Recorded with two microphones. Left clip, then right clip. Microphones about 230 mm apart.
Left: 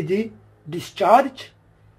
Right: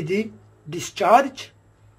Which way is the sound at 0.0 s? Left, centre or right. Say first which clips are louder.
Left 1 dB; centre.